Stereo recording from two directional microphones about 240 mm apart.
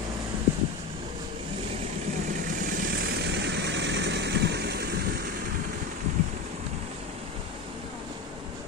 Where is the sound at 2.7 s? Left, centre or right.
Right.